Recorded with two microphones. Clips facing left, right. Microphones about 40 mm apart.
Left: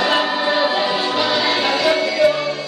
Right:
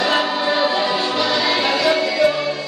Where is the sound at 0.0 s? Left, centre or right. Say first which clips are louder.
Left 1 dB; centre.